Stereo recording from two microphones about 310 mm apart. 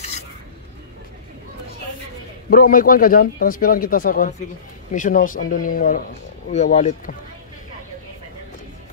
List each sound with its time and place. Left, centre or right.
2.5 s speech: left